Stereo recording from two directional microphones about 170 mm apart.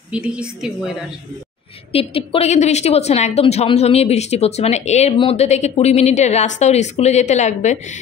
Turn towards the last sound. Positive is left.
turn(degrees=45)  # may be behind; listen again after turning